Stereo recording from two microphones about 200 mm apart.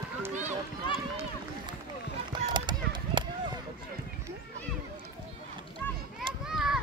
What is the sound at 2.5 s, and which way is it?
Run, 20° right (ahead or behind).